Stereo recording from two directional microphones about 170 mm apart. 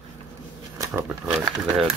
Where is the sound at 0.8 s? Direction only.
15° right (ahead or behind).